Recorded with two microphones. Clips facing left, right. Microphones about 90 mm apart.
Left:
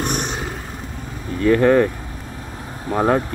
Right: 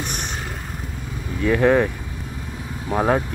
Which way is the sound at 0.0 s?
40° left (ahead or behind).